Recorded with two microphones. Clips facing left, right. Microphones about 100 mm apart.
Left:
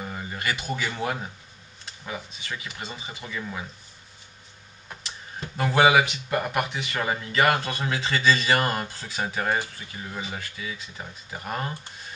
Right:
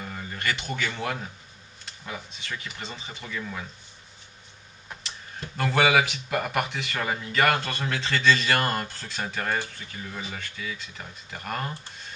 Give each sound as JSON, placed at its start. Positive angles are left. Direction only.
{"t": 0.0, "sound": "speech", "side_deg": 15}
{"t": 5.6, "sound": "speech", "side_deg": 5}